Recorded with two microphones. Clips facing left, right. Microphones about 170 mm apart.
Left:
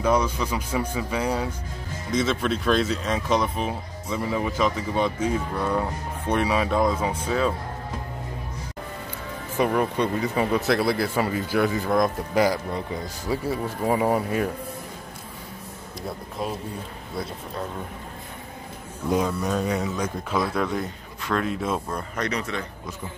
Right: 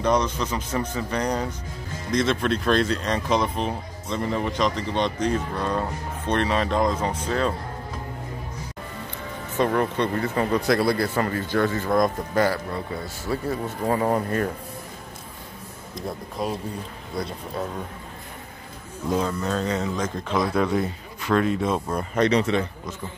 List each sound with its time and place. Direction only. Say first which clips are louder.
0.0 s speech: even; 5° left (ahead or behind)
9.6 s speech: even; 10° left (ahead or behind)
19.0 s speech: left 1 dB; 10° left (ahead or behind)
21.9 s speech: right 7 dB; 25° right (ahead or behind)